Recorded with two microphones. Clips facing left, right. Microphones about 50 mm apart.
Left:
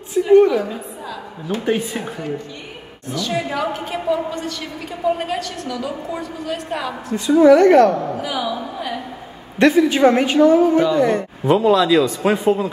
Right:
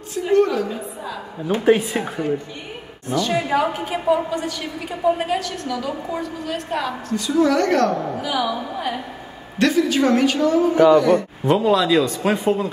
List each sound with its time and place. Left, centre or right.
0.1 s a sound: centre
1.6 s a woman's voice: centre
3.7 s a woman's voice: centre
7.2 s a woman's voice: left
7.9 s a woman's voice: centre
8.7 s a woman's voice: centre
9.6 s a woman's voice: left
11.4 s speech: centre
11.7 s a woman's voice: centre
12.2 s speech: centre